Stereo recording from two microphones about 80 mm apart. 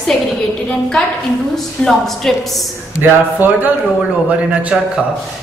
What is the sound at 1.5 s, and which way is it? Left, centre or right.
Speech, centre.